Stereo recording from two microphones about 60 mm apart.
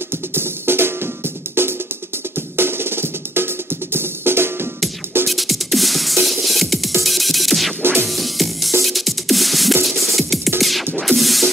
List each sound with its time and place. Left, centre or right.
0.3 s music: right
5.2 s music: centre
7.8 s music: right
8.1 s music: centre